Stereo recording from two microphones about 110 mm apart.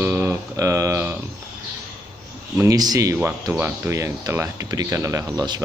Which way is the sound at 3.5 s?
20° right (ahead or behind).